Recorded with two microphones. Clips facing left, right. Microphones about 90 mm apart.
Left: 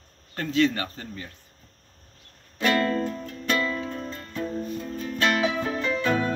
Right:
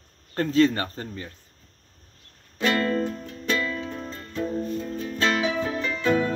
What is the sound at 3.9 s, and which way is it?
Music, 15° right (ahead or behind).